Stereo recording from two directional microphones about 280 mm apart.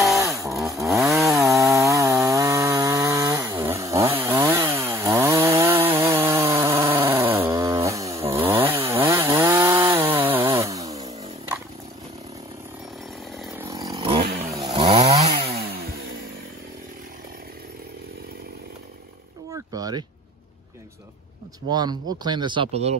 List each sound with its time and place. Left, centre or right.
0.0 s chainsaw: centre
13.4 s chainsaw: centre; by 15.5 s right
19.5 s a sound: centre
21.6 s speech: centre